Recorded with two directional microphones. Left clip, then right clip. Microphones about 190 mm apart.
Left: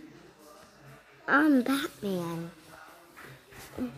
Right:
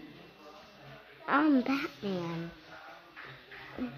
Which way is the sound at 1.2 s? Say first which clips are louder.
Left 3 dB; 25° left (ahead or behind).